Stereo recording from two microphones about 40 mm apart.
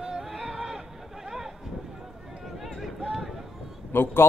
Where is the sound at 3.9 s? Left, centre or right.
Left.